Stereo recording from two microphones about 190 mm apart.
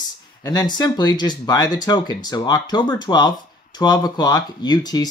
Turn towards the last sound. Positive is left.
turn(degrees=20)  # may be behind; listen again after turning